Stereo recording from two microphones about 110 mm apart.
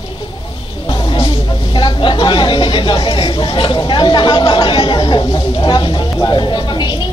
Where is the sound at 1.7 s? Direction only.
50° left (ahead or behind).